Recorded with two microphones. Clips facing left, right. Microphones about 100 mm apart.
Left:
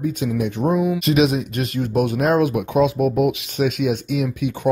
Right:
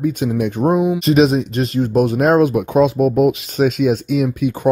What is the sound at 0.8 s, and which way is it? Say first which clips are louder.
Speech: right 4 dB; 25° right (ahead or behind).